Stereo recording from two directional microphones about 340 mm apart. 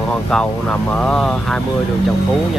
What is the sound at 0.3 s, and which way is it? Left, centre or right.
Speech, centre.